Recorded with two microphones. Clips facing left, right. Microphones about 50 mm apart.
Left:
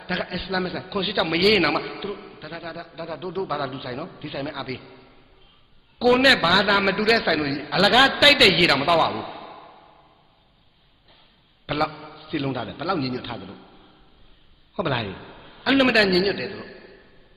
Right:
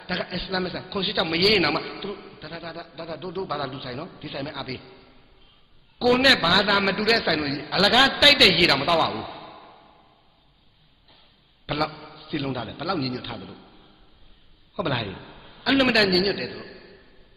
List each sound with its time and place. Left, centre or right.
0.0 s a man's voice: centre
9.7 s a sound: left
11.6 s a man's voice: centre